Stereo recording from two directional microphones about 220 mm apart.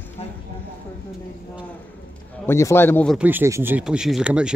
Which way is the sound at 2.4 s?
10° left (ahead or behind).